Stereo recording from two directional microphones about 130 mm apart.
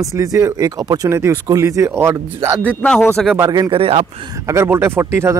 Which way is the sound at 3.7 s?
45° right (ahead or behind).